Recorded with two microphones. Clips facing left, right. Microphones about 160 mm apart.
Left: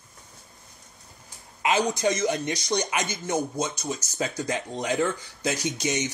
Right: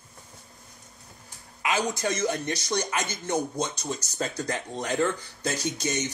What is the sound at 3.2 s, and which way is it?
Speech, centre (ahead or behind).